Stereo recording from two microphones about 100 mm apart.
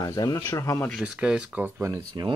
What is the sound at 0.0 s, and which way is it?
Speech, 35° left (ahead or behind).